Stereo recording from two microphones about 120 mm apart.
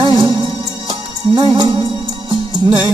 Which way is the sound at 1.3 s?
45° right (ahead or behind).